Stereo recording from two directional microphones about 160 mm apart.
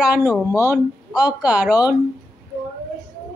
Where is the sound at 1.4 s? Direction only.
10° right (ahead or behind).